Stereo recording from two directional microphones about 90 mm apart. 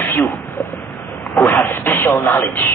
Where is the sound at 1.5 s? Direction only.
25° left (ahead or behind).